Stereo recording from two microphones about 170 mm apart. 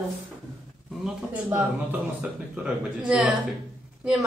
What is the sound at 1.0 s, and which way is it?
Speech, 10° right (ahead or behind).